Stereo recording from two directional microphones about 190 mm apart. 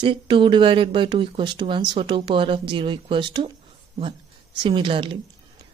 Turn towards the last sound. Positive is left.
turn(degrees=-25)  # may be behind; listen again after turning